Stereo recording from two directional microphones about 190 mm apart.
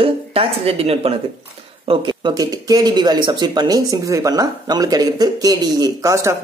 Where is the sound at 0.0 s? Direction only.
30° right (ahead or behind).